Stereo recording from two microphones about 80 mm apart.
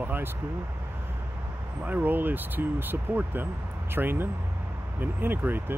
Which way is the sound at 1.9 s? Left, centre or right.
Right.